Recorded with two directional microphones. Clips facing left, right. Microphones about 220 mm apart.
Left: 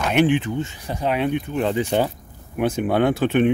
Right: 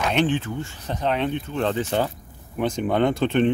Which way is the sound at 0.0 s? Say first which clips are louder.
Left 4 dB; 10° left (ahead or behind).